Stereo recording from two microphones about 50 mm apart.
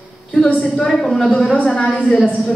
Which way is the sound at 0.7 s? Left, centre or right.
Centre.